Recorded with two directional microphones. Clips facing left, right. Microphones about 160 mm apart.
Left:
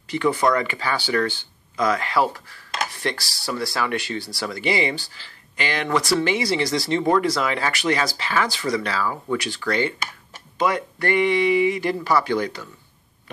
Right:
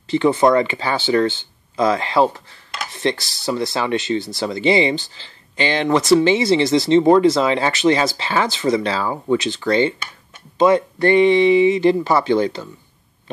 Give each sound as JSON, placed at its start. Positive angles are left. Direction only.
{"t": 0.1, "sound": "speech", "side_deg": -25}